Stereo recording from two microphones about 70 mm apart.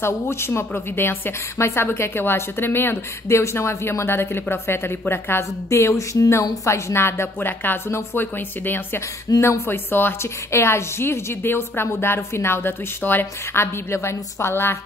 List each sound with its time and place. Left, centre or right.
0.0 s a woman's voice: left
5.7 s a woman's voice: left